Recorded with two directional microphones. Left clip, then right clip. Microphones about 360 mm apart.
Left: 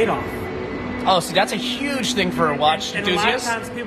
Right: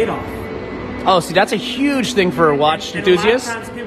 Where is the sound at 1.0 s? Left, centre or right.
Right.